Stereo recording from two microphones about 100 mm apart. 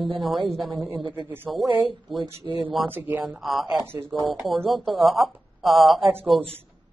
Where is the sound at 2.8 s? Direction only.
Centre (ahead or behind).